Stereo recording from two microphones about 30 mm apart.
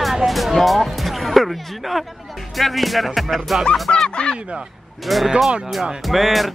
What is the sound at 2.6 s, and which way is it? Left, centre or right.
Speech, centre.